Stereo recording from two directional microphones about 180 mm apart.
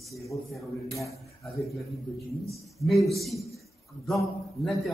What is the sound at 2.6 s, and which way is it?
A man's voice, centre (ahead or behind).